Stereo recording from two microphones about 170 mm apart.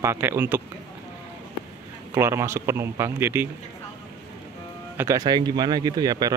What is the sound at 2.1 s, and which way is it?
Speech, 15° right (ahead or behind).